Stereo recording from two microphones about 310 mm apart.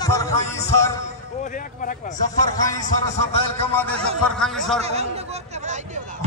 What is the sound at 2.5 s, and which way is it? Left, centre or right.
A man's voice, centre.